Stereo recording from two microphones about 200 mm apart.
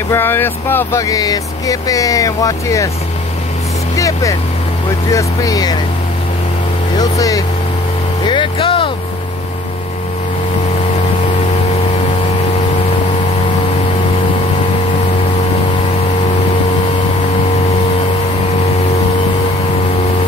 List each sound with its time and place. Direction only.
0.1 s speech: 10° left (ahead or behind)
3.9 s vehicle: 15° left (ahead or behind)
5.1 s speech: 15° left (ahead or behind)
7.0 s speech: 15° left (ahead or behind)
8.3 s vehicle: 25° left (ahead or behind)